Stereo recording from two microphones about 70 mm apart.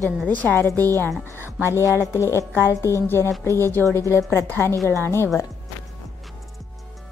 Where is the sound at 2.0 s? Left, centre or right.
Left.